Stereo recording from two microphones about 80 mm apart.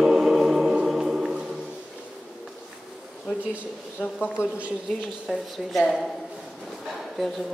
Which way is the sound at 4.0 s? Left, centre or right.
Left.